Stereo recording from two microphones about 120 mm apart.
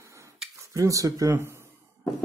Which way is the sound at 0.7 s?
25° right (ahead or behind).